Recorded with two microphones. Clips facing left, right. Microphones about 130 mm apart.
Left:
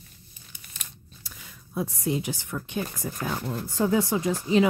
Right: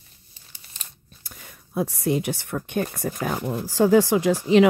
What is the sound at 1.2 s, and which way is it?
Speech, 50° right (ahead or behind).